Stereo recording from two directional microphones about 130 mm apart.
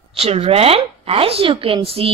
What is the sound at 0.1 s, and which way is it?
Speech, 50° right (ahead or behind).